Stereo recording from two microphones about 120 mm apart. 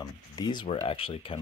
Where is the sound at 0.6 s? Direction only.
50° left (ahead or behind).